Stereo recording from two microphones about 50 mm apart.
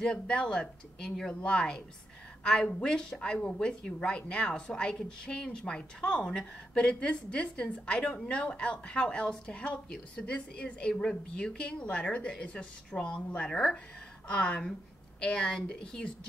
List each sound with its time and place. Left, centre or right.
0.0 s a woman's voice: centre